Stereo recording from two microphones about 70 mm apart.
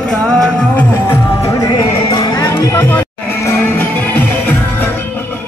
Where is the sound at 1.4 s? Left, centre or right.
Left.